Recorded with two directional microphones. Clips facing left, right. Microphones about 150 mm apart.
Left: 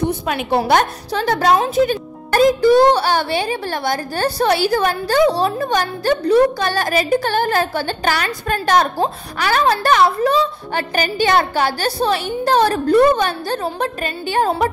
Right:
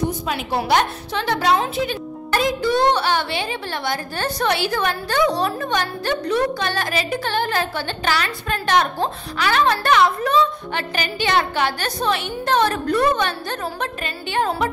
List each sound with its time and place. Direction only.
0.3 s a woman's voice: 50° left (ahead or behind)